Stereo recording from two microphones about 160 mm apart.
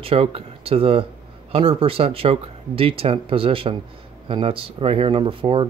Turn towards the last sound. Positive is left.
turn(degrees=-35)  # may be behind; listen again after turning